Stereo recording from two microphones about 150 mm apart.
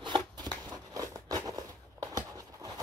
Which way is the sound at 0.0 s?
30° right (ahead or behind).